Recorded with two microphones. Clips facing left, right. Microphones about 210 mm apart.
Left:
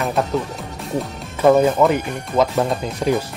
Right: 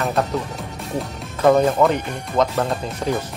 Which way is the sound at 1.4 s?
Centre (ahead or behind).